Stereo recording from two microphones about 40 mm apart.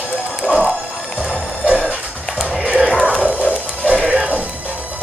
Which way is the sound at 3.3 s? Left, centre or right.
Right.